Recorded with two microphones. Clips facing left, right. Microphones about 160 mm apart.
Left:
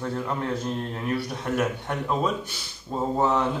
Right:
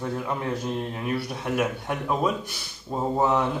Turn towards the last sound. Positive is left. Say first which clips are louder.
# even
turn(degrees=-5)  # may be behind; listen again after turning